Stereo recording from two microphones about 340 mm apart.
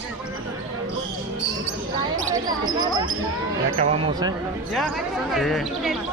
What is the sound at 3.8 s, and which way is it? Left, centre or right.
Speech, centre.